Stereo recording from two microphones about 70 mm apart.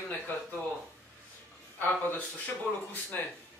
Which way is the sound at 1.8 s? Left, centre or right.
Left.